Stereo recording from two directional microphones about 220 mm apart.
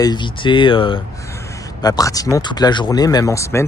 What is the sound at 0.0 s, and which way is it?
Speech, 20° left (ahead or behind).